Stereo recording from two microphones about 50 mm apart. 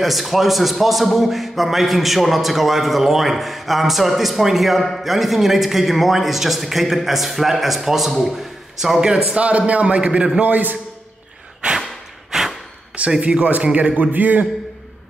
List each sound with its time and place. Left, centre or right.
0.0 s a man's voice: centre
9.4 s a man's voice: right
10.4 s a man's voice: right
12.3 s a sound: centre
13.2 s a man's voice: right